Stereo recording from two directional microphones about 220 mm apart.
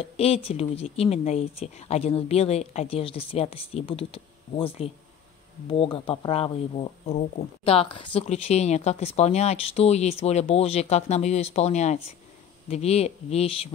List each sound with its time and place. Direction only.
0.0 s speech: 25° left (ahead or behind)